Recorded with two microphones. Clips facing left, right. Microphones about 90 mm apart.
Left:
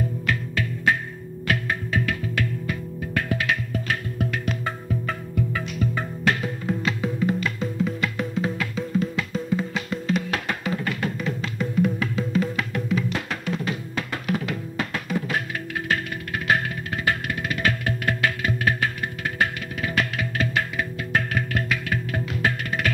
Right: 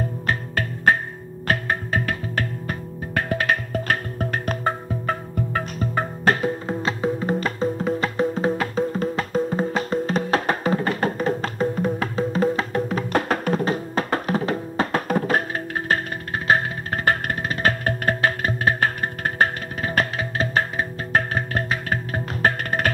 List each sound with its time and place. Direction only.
0.3 s music: 45° right (ahead or behind)